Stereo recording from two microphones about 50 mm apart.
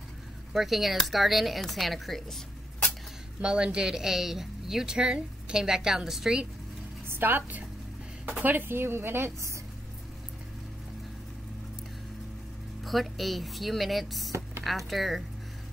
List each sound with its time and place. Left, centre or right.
0.5 s speech: centre
3.3 s a woman's voice: centre
7.1 s a woman's voice: right
12.8 s speech: centre